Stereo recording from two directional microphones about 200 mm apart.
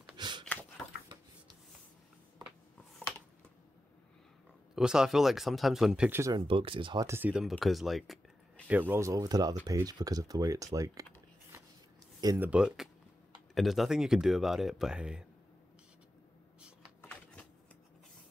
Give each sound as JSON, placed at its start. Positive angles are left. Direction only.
{"t": 0.2, "sound": "a sound", "side_deg": -20}
{"t": 4.7, "sound": "speech", "side_deg": -5}
{"t": 6.3, "sound": "speech", "side_deg": -25}
{"t": 12.2, "sound": "speech", "side_deg": -20}
{"t": 12.4, "sound": "speech", "side_deg": -5}